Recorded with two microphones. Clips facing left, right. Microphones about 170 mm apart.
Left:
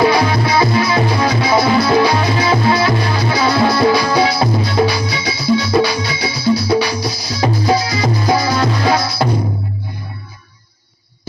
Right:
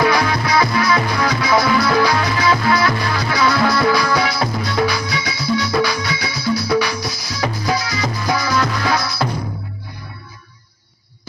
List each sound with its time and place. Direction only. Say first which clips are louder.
0.0 s music: left 4 dB; 25° left (ahead or behind)